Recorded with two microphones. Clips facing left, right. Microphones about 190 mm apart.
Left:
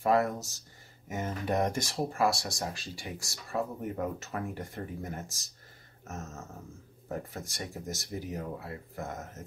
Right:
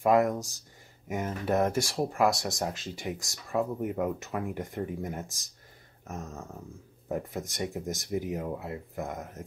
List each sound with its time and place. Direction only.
0.0 s speech: 15° right (ahead or behind)